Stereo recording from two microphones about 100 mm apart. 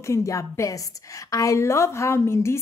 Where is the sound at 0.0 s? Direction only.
30° left (ahead or behind).